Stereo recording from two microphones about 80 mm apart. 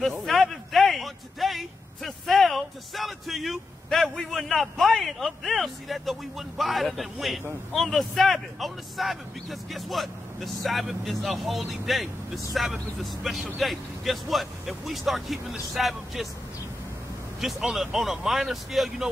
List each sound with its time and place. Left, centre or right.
0.0 s a sound: centre
7.7 s speech: centre
17.4 s speech: centre